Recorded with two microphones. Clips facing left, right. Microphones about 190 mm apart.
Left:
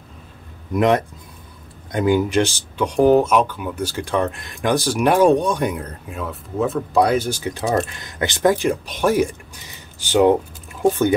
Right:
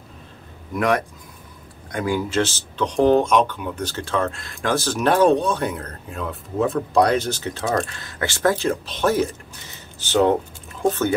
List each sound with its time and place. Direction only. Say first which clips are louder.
0.7 s speech: left 4 dB; 20° left (ahead or behind)